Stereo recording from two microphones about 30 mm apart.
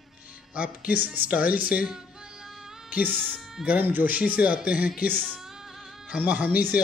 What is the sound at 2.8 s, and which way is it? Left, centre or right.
Speech, right.